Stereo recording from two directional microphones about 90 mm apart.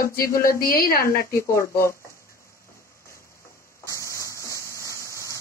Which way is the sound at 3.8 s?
35° left (ahead or behind).